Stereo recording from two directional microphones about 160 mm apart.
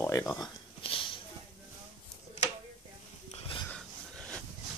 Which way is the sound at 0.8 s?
35° left (ahead or behind).